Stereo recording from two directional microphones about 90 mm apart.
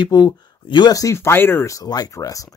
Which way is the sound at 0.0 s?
55° left (ahead or behind).